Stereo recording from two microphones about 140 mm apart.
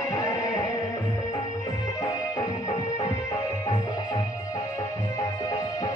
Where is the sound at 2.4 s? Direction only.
30° left (ahead or behind).